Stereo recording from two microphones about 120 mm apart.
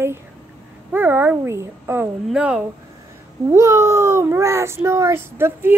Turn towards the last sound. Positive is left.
turn(degrees=-20)  # may be behind; listen again after turning